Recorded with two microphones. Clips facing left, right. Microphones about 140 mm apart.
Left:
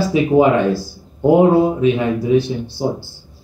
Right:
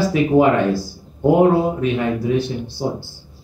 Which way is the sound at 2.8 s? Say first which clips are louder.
Left 3 dB; 10° left (ahead or behind).